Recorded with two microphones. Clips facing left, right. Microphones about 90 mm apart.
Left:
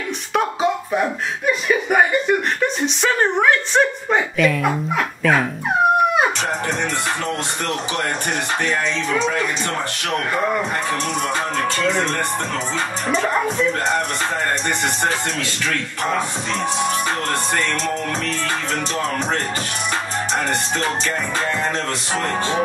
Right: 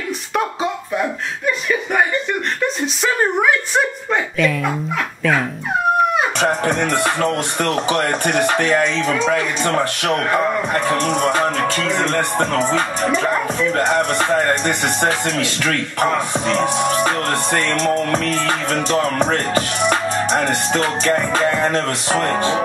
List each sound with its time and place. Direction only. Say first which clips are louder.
0.3 s a sound: left 1 dB; centre (ahead or behind)
0.9 s chuckle: left 1 dB; 10° left (ahead or behind)
2.6 s a woman's voice: even; 5° right (ahead or behind)
6.6 s music: right 5 dB; 60° right (ahead or behind)
11.1 s music: right 5 dB; 60° right (ahead or behind)
15.6 s music: right 4 dB; 55° right (ahead or behind)
18.3 s music: right 4 dB; 60° right (ahead or behind)